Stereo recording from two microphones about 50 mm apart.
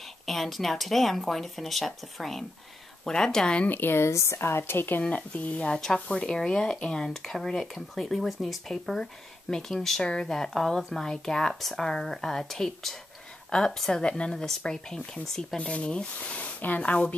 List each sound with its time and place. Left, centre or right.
0.3 s speech: centre
3.6 s speech: left
3.9 s speech: left
4.4 s a woman's voice: left
5.1 s speech: left
6.1 s speech: centre
15.5 s speech: left